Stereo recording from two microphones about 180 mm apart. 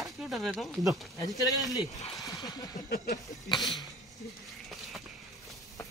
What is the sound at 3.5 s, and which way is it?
Speech, 25° left (ahead or behind).